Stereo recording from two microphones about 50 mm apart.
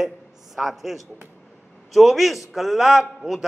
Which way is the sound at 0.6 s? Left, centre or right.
Centre.